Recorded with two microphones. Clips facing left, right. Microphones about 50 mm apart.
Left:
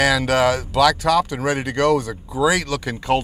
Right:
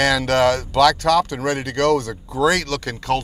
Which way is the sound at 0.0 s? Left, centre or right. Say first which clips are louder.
Even; centre.